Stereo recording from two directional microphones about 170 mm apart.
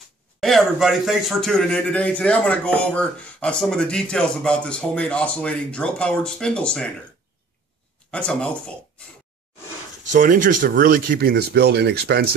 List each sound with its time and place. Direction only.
0.4 s speech: centre (ahead or behind)
8.1 s speech: 5° left (ahead or behind)
10.0 s speech: 50° right (ahead or behind); by 12.3 s 70° right (ahead or behind)